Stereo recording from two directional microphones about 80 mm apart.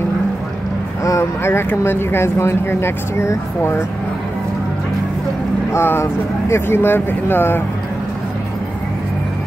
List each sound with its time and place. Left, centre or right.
1.4 s speech: left
5.7 s speech: left